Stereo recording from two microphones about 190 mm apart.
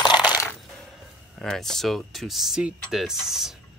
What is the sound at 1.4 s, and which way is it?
Speech, centre (ahead or behind).